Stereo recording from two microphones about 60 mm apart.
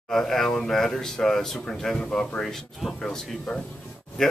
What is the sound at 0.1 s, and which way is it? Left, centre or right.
Speech, centre.